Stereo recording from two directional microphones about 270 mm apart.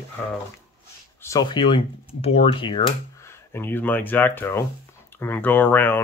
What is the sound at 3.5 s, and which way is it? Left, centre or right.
Speech, centre.